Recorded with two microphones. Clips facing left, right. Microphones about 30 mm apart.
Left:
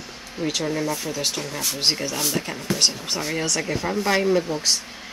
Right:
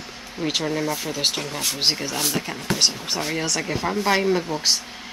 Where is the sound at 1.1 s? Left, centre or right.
Right.